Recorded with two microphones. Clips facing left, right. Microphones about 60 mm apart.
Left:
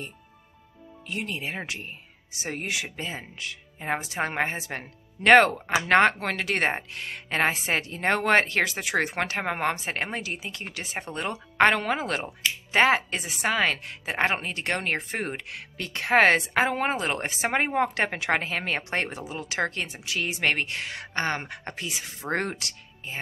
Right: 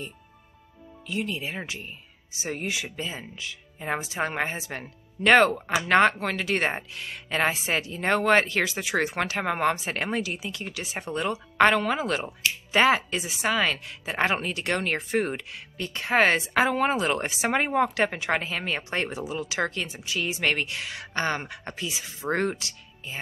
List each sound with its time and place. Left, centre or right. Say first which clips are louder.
1.0 s speech: right 2 dB; left
4.2 s a woman's voice: left 1 dB; left
15.5 s speech: even; left
16.5 s a woman's voice: right 2 dB; left
20.4 s a woman's voice: left 2 dB; left